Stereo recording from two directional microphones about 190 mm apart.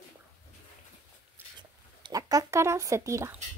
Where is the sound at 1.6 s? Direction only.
20° right (ahead or behind).